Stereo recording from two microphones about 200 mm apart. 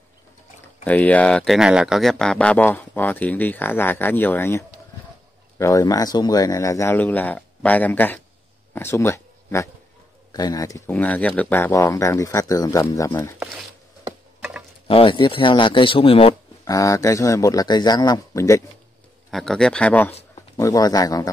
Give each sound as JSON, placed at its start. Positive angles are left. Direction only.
{"t": 0.8, "sound": "speech", "side_deg": 5}
{"t": 14.9, "sound": "speech", "side_deg": 25}
{"t": 16.6, "sound": "speech", "side_deg": 15}
{"t": 19.3, "sound": "speech", "side_deg": 0}